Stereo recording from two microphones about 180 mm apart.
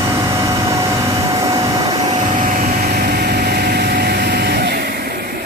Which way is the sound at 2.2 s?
40° right (ahead or behind).